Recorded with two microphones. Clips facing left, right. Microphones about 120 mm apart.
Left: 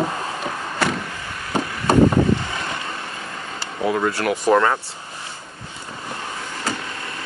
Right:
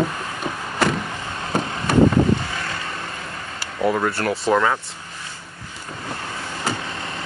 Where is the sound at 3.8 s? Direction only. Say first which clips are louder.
Right 1 dB; centre (ahead or behind).